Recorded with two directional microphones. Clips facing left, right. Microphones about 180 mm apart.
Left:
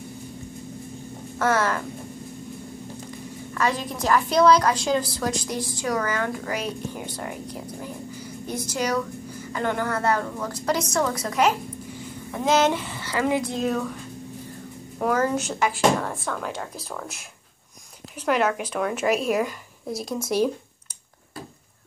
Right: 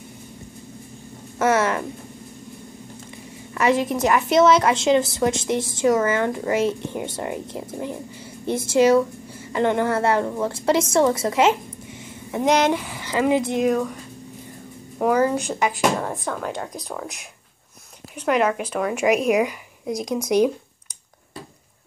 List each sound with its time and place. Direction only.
1.4 s a woman's voice: 25° right (ahead or behind)
3.5 s a woman's voice: 25° right (ahead or behind)
15.0 s speech: 10° right (ahead or behind)
18.2 s speech: 5° right (ahead or behind)
19.0 s speech: 15° right (ahead or behind)